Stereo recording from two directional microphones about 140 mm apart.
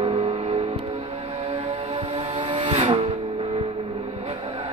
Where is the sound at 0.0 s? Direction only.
45° right (ahead or behind).